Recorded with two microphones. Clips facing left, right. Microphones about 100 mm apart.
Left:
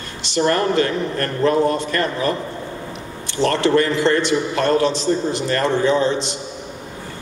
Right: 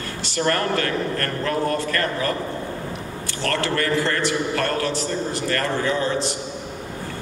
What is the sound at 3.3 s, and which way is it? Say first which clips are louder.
A man's voice: left 8 dB; 20° left (ahead or behind).